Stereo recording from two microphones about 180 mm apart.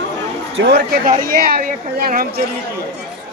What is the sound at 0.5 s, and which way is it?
Speech, 65° right (ahead or behind).